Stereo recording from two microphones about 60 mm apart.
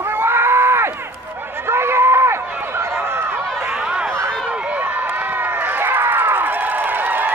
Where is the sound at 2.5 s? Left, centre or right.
Right.